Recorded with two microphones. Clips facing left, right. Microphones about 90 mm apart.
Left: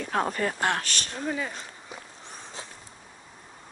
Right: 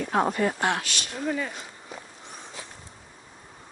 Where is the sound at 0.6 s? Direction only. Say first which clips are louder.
Right 1 dB; 45° left (ahead or behind).